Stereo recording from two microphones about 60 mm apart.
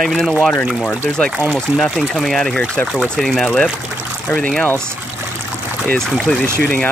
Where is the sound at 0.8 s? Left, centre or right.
Centre.